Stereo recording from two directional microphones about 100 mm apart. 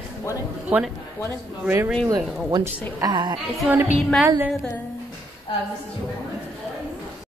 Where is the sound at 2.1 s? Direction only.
40° right (ahead or behind).